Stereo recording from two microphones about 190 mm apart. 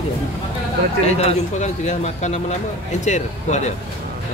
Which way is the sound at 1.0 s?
35° left (ahead or behind).